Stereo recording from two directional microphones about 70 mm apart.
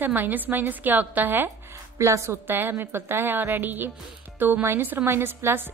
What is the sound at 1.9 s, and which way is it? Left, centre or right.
A woman's voice, right.